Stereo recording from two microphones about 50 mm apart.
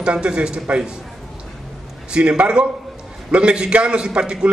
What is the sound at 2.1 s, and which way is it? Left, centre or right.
A man's voice, centre.